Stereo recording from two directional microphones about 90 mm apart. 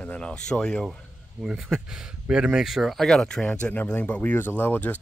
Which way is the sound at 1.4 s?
5° right (ahead or behind).